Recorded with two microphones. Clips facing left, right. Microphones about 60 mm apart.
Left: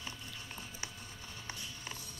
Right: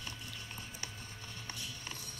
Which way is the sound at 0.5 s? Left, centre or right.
Centre.